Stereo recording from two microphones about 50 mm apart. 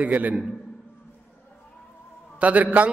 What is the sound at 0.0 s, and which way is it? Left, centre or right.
Speech, right.